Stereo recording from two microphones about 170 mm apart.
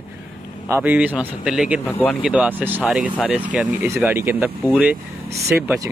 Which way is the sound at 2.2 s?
5° right (ahead or behind).